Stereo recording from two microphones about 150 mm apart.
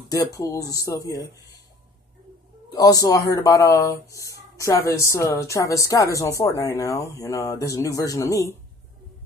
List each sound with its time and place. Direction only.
0.1 s speech: 25° left (ahead or behind)
2.7 s speech: 25° left (ahead or behind)